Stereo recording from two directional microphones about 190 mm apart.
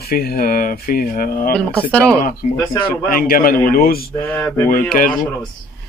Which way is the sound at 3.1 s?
50° left (ahead or behind).